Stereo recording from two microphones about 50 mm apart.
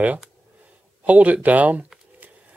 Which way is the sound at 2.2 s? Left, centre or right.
Right.